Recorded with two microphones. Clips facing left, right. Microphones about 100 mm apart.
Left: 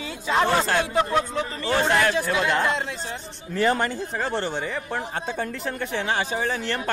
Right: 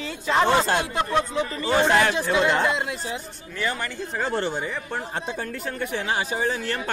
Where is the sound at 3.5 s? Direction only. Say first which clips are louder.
Left 6 dB; 35° left (ahead or behind).